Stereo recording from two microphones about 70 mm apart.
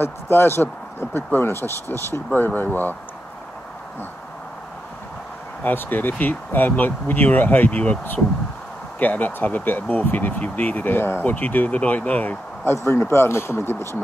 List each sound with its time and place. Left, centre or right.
0.0 s speech: left
5.6 s speech: left
12.6 s speech: left